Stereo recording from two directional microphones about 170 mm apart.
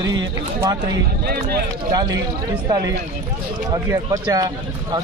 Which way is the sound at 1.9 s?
25° right (ahead or behind).